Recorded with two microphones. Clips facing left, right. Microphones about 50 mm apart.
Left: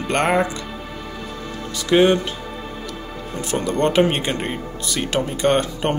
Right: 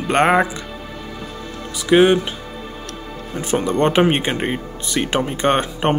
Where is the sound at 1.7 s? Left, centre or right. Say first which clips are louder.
Right 2 dB; centre.